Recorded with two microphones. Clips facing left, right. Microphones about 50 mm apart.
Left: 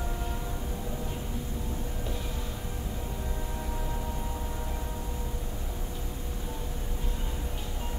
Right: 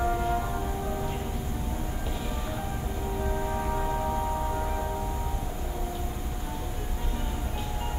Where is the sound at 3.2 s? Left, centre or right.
Right.